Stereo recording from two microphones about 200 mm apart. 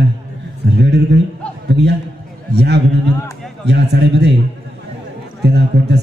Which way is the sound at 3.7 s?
60° right (ahead or behind).